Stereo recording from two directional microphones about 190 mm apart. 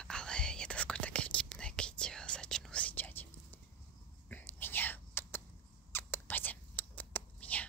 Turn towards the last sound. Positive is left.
turn(degrees=10)  # may be behind; listen again after turning